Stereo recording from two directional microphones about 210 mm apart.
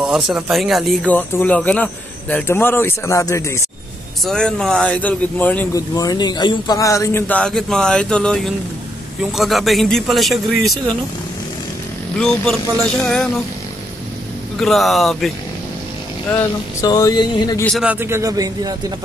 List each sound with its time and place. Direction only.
0.0 s speech: centre (ahead or behind); by 3.6 s 15° left (ahead or behind)
4.2 s speech: 5° left (ahead or behind)
12.2 s speech: 5° left (ahead or behind)
14.6 s speech: centre (ahead or behind)
16.8 s speech: 15° left (ahead or behind)
17.6 s speech: 5° right (ahead or behind)